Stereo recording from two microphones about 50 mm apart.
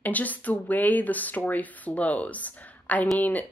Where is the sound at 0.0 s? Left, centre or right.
Left.